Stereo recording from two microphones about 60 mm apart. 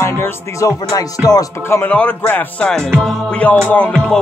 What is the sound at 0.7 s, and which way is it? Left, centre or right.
Music, left.